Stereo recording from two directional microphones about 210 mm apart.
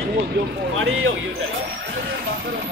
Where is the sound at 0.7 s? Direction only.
75° right (ahead or behind).